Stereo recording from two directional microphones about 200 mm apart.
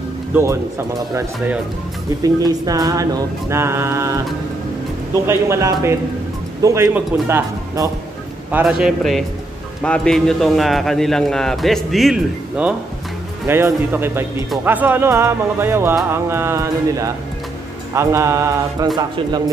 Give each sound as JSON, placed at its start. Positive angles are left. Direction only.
{"t": 0.3, "sound": "speech", "side_deg": -15}
{"t": 1.1, "sound": "mantra", "side_deg": -10}
{"t": 5.2, "sound": "mantra", "side_deg": -15}
{"t": 8.5, "sound": "a man's voice", "side_deg": -5}
{"t": 13.5, "sound": "mantra", "side_deg": -10}
{"t": 18.9, "sound": "speech", "side_deg": -20}